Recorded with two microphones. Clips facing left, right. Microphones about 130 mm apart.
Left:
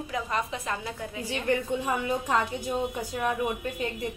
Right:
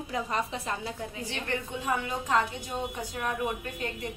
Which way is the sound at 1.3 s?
10° left (ahead or behind).